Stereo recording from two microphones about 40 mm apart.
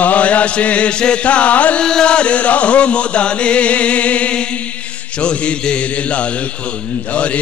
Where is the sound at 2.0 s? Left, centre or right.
Left.